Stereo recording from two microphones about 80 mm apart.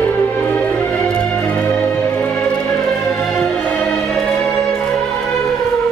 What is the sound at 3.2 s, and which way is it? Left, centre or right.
Music, centre.